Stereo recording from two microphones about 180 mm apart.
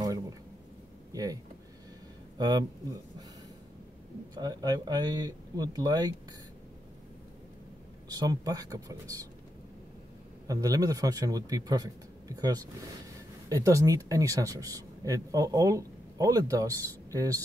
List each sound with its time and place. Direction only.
0.0 s a sound: 20° right (ahead or behind)
1.1 s speech: 20° right (ahead or behind)
4.4 s speech: 20° right (ahead or behind)
8.1 s speech: 20° right (ahead or behind)
10.4 s speech: 20° right (ahead or behind)